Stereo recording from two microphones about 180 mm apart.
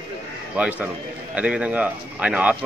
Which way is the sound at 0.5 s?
5° right (ahead or behind).